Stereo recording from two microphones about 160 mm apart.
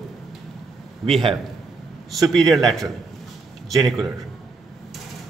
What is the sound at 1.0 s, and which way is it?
Speech, centre (ahead or behind).